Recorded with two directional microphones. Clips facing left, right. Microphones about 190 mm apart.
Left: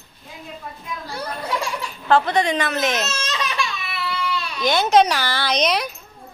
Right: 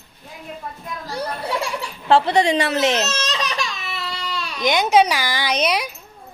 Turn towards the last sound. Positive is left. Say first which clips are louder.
# even
turn(degrees=-10)  # may be behind; listen again after turning